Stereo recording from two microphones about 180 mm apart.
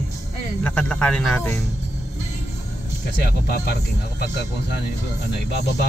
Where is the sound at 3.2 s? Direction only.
65° left (ahead or behind).